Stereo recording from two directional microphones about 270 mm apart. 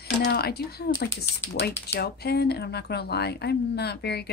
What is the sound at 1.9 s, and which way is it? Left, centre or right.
A woman's voice, left.